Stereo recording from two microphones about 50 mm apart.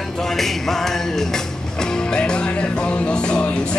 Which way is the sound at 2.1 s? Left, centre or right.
Centre.